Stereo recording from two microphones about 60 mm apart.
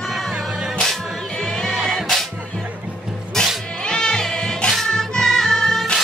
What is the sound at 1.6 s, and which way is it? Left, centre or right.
Music, centre.